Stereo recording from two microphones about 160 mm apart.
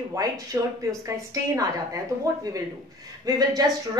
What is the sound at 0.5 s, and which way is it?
A woman's voice, 15° right (ahead or behind).